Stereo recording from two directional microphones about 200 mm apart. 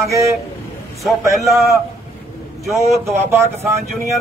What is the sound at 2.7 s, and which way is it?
Speech, 15° right (ahead or behind).